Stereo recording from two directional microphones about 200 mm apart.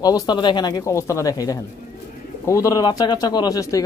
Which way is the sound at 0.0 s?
20° left (ahead or behind).